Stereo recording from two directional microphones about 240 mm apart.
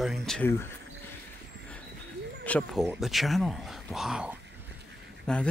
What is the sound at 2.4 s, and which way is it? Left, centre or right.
Speech, centre.